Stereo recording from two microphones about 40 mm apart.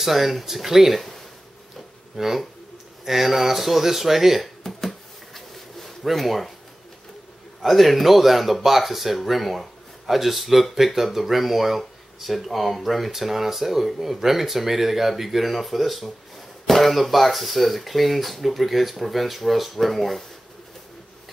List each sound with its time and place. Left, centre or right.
0.0 s speech: centre
2.1 s speech: centre
4.6 s a sound: centre
7.6 s speech: centre